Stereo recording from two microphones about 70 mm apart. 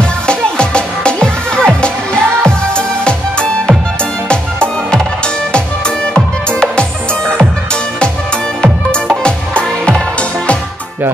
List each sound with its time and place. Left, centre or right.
0.3 s music: centre
5.5 s music: centre
9.2 s music: centre